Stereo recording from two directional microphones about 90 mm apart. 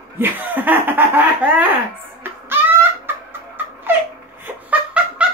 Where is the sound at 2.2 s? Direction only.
25° right (ahead or behind).